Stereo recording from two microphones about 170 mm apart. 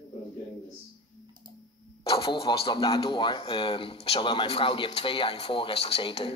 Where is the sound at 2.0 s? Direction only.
35° left (ahead or behind).